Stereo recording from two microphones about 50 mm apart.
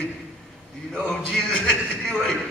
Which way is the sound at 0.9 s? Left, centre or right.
Left.